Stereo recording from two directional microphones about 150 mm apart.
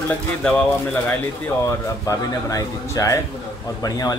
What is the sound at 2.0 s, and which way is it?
Speech, 20° left (ahead or behind).